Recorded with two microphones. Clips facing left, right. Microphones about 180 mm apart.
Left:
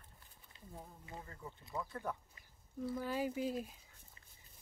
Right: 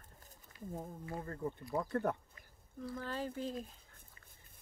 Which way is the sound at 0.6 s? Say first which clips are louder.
Right 9 dB; 45° right (ahead or behind).